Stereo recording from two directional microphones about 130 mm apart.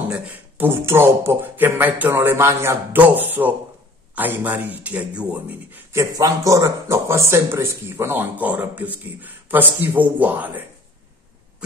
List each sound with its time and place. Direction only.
0.1 s speech: 15° right (ahead or behind)